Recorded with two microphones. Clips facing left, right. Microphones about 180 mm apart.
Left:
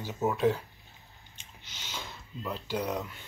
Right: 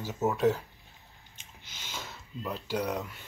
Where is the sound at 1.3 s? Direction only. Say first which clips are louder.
Even; 50° right (ahead or behind).